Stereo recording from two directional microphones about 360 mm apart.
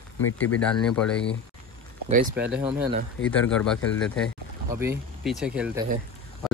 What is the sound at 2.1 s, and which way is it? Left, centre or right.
Speech, right.